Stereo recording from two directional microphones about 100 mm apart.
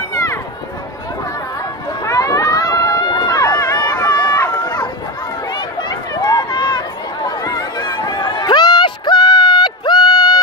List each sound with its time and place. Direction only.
0.1 s run: 30° left (ahead or behind)
2.0 s run: 35° left (ahead or behind)
5.5 s chatter: 50° left (ahead or behind)
7.2 s a sound: 45° left (ahead or behind)